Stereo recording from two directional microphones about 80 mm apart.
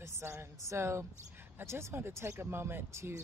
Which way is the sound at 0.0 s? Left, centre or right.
Right.